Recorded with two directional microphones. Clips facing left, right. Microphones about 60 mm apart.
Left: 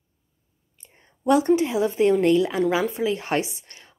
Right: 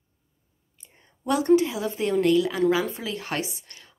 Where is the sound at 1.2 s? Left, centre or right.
Left.